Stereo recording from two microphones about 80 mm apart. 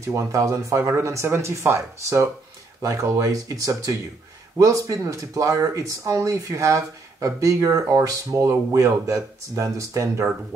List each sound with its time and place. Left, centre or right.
0.0 s speech: right